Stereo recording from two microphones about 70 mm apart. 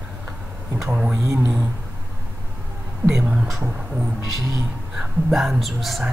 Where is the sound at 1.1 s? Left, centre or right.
Right.